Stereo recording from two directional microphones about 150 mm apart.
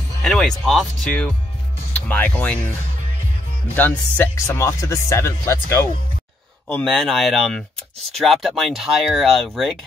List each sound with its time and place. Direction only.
0.2 s speech: centre (ahead or behind)
3.7 s speech: 10° left (ahead or behind)
6.7 s speech: 5° left (ahead or behind)